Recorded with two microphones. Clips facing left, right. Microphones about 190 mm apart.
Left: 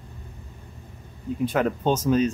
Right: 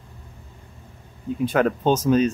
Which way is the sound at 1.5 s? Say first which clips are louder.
Right 4 dB; 70° right (ahead or behind).